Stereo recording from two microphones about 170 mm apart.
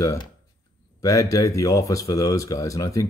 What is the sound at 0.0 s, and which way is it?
Speech, 20° left (ahead or behind).